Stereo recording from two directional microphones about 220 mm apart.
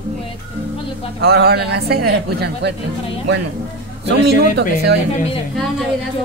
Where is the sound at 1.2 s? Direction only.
45° right (ahead or behind).